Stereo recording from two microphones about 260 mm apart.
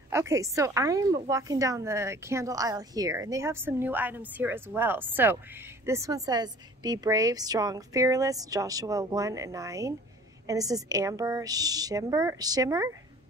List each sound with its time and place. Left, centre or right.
0.1 s a woman's voice: centre